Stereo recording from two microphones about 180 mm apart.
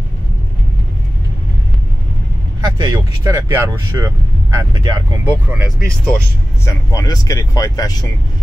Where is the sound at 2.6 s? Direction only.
20° right (ahead or behind).